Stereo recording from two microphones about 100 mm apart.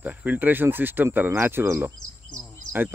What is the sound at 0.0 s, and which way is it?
Speech, 15° right (ahead or behind).